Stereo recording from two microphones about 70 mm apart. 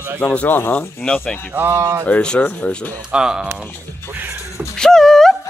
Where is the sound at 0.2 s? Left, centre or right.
Centre.